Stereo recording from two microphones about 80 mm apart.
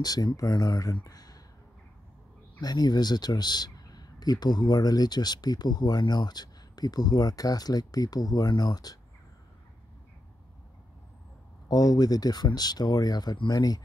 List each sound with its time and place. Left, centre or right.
0.0 s speech: left
1.0 s a sound: left
2.6 s speech: left
11.7 s speech: left